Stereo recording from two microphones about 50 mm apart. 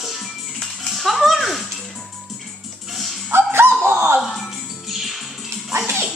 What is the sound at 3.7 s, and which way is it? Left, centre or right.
Dog, right.